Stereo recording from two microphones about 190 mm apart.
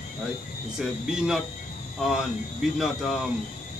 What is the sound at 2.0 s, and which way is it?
Speech, centre (ahead or behind).